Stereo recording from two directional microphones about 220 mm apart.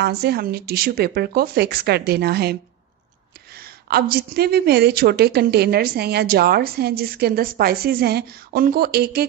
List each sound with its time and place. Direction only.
0.0 s a woman's voice: 45° right (ahead or behind)
3.9 s a woman's voice: 45° right (ahead or behind)